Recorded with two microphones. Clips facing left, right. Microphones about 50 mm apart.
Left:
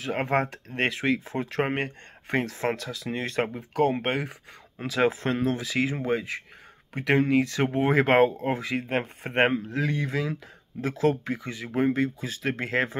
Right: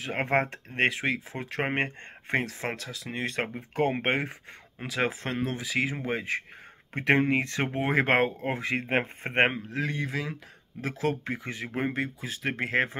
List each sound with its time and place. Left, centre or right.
0.0 s speech: centre
0.3 s speech: right
0.7 s speech: centre
1.7 s speech: right
2.3 s speech: centre
3.5 s speech: right
4.7 s speech: centre
6.9 s speech: right
7.6 s speech: centre
8.5 s speech: right
9.7 s speech: centre
11.4 s speech: right
11.7 s speech: centre